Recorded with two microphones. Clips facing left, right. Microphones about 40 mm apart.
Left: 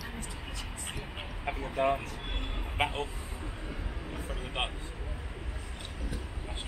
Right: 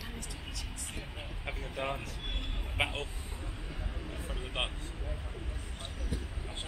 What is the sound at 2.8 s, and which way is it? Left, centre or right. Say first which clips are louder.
Speech: left 3 dB; centre.